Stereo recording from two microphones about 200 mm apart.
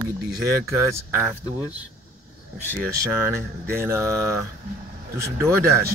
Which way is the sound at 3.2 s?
10° right (ahead or behind).